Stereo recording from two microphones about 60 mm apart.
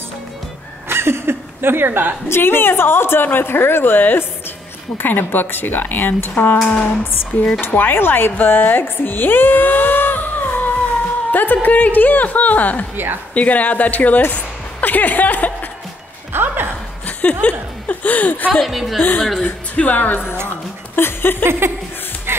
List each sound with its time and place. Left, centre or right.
0.8 s chuckle: right
2.2 s speech: left
6.6 s a sound: centre
7.1 s speech: left
12.9 s a woman's voice: right
13.3 s speech: left
16.3 s a sound: right
17.2 s speech: left
18.5 s a woman's voice: centre
19.4 s speech: left
21.5 s speech: right